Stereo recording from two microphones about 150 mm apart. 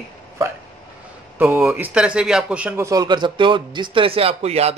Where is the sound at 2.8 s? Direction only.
25° right (ahead or behind); by 4.7 s 45° right (ahead or behind).